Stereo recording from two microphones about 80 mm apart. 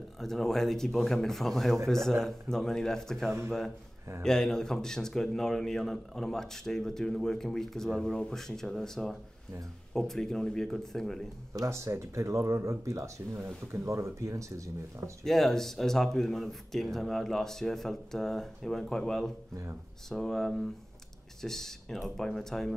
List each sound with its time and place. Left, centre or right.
0.2 s a man's voice: centre
11.5 s speech: right
15.2 s a man's voice: centre